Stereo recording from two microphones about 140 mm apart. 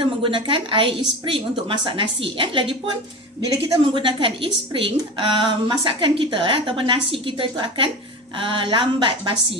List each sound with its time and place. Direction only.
0.0 s a woman's voice: 35° right (ahead or behind)